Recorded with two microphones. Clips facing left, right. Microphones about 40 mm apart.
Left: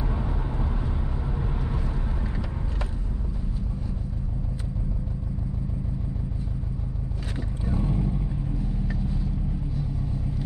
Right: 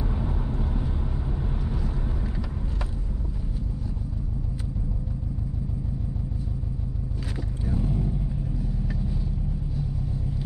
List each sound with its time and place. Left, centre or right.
0.2 s vehicle: left
7.6 s vehicle: left